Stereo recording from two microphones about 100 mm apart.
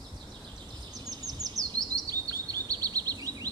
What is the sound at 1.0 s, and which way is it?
Bird vocalization, 35° right (ahead or behind).